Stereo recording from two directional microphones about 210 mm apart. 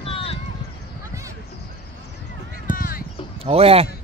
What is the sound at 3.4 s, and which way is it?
Speech, 30° right (ahead or behind).